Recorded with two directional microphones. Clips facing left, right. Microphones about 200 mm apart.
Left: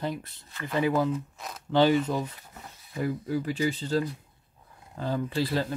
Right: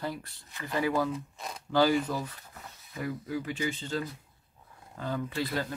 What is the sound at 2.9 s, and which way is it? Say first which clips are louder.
Speech: left 5 dB; 35° left (ahead or behind).